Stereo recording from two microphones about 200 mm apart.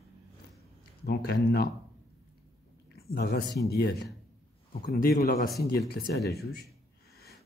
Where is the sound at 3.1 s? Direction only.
50° left (ahead or behind).